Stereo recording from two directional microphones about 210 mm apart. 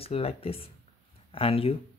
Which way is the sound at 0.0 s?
30° left (ahead or behind).